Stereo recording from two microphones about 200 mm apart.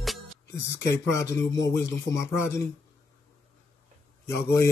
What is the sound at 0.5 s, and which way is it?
Speech, 15° left (ahead or behind).